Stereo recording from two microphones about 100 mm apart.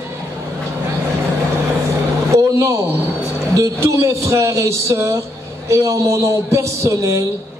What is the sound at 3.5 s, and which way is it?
A woman's voice, 30° right (ahead or behind).